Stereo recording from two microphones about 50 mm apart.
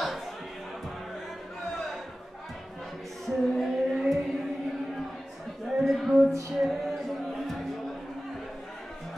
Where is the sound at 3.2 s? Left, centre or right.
Centre.